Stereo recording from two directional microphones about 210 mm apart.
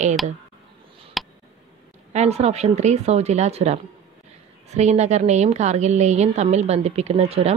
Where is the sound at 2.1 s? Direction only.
30° right (ahead or behind).